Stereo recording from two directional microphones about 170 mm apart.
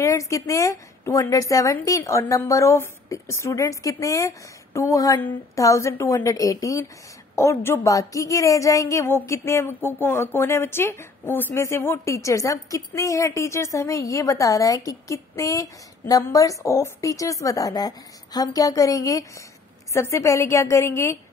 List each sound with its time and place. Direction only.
0.0 s a woman's voice: 20° left (ahead or behind)